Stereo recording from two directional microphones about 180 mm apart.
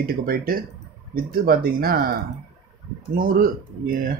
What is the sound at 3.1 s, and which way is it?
Speech, 50° right (ahead or behind).